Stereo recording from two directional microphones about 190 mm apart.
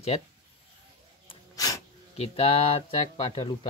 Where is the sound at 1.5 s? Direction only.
20° left (ahead or behind).